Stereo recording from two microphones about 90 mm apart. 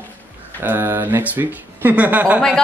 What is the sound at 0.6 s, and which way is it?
Speech, 25° right (ahead or behind).